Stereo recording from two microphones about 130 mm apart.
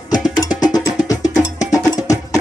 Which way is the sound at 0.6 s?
30° left (ahead or behind).